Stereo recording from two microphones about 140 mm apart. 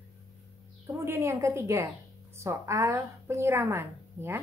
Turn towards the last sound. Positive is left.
turn(degrees=-20)  # may be behind; listen again after turning